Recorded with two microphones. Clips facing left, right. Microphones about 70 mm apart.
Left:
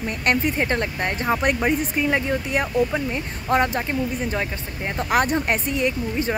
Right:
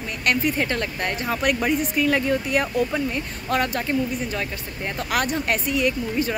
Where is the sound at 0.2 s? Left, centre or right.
Left.